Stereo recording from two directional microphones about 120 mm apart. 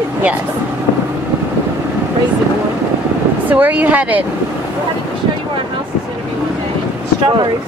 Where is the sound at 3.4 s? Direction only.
15° right (ahead or behind).